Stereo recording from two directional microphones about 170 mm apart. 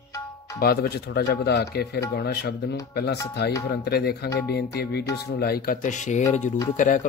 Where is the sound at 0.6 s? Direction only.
65° left (ahead or behind).